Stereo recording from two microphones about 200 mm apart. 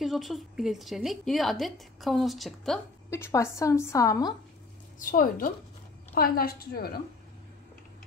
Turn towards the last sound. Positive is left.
turn(degrees=50)  # may be behind; listen again after turning